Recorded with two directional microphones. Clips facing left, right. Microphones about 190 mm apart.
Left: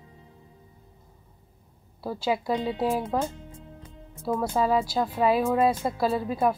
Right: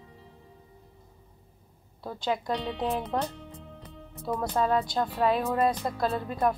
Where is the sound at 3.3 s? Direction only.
65° right (ahead or behind).